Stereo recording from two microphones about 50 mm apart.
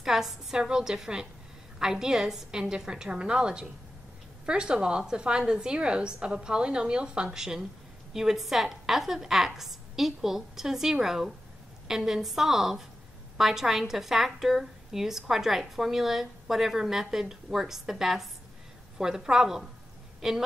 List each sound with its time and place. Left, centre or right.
0.0 s a woman's voice: centre